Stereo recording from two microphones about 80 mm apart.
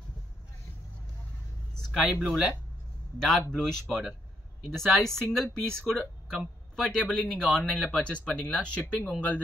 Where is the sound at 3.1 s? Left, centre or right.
Centre.